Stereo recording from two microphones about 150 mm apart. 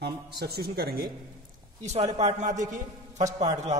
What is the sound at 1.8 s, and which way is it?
A man's voice, 50° right (ahead or behind).